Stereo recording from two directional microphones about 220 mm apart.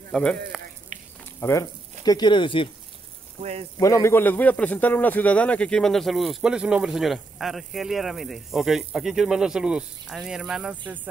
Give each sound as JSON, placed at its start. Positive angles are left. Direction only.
{"t": 0.1, "sound": "speech", "side_deg": 5}
{"t": 1.4, "sound": "speech", "side_deg": 15}
{"t": 3.7, "sound": "a man's voice", "side_deg": 15}